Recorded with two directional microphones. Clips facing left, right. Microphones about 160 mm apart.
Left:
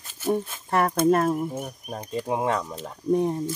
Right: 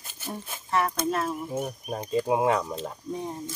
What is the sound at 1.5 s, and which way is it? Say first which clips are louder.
Speech: right 2 dB; 5° right (ahead or behind).